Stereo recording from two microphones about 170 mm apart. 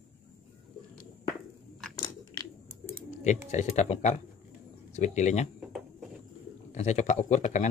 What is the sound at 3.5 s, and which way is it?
Speech, 40° left (ahead or behind).